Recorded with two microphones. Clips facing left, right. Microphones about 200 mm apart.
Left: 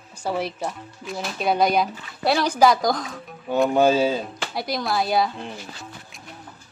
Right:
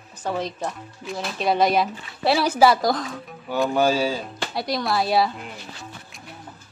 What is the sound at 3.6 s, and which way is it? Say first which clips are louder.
Speech: left 2 dB; 20° left (ahead or behind).